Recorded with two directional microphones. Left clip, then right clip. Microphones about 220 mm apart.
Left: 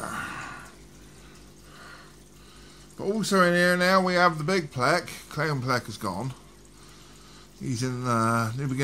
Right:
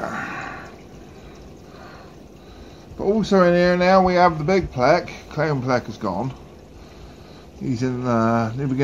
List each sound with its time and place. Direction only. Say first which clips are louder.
0.1 s a sound: right 5 dB; 35° left (ahead or behind)
3.0 s speech: right 6 dB; 40° left (ahead or behind)
7.6 s speech: right 6 dB; 35° left (ahead or behind)